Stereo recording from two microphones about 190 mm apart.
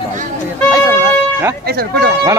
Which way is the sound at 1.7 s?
55° right (ahead or behind).